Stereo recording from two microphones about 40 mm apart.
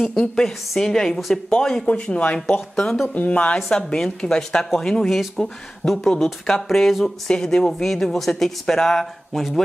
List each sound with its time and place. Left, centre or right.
0.2 s a woman's voice: centre
3.2 s speech: left
3.7 s a woman's voice: left; by 7.1 s centre
7.2 s speech: centre
9.3 s speech: centre